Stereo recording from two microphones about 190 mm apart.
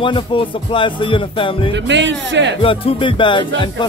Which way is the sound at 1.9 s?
70° right (ahead or behind).